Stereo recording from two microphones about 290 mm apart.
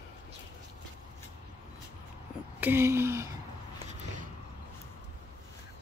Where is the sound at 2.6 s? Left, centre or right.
Centre.